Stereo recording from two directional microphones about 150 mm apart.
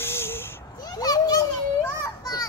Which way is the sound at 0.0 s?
15° left (ahead or behind).